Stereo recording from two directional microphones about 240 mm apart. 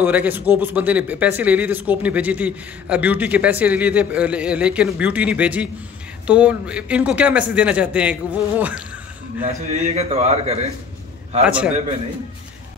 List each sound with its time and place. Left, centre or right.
0.0 s speech: centre
9.4 s a man's voice: right
11.4 s speech: centre